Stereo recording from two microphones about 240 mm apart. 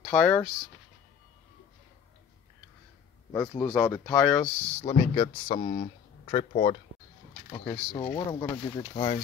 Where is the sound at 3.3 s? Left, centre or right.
Centre.